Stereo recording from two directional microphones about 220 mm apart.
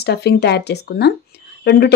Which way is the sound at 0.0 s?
45° left (ahead or behind).